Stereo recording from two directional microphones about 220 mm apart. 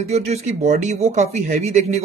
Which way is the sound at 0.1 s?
30° right (ahead or behind).